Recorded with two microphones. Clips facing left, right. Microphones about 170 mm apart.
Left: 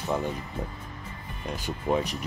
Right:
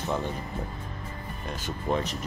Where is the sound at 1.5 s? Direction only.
15° left (ahead or behind).